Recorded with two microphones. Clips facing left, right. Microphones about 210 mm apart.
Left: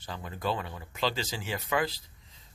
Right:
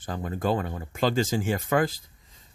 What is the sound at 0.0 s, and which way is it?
Speech, 50° right (ahead or behind).